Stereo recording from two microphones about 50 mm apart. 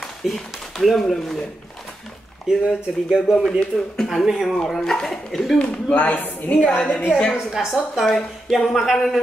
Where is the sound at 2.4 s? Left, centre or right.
Centre.